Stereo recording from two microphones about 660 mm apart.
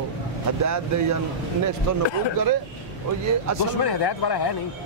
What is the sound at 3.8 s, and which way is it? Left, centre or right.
Speech, left.